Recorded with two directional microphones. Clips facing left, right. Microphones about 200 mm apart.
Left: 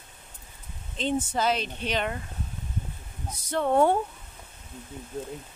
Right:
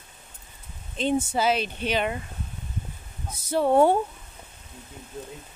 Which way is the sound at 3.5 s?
5° right (ahead or behind).